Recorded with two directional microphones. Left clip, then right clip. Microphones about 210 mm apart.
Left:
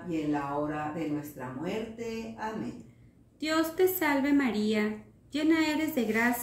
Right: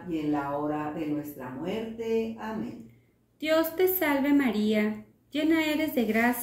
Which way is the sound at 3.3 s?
10° left (ahead or behind).